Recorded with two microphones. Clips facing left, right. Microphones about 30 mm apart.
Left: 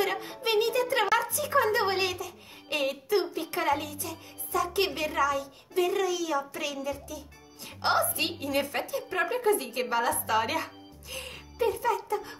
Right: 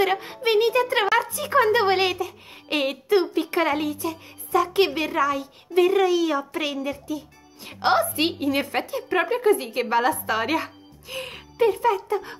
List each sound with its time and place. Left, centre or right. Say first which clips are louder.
0.0 s a child's voice: right 7 dB; right
3.8 s speech: right 10 dB; right
4.5 s speech: right 8 dB; right
4.8 s speech: right 5 dB; centre
5.8 s a child's voice: right 8 dB; right
11.5 s a child's voice: right 7 dB; right